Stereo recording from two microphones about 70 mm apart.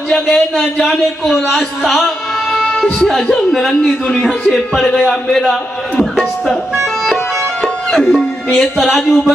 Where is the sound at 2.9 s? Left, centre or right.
Centre.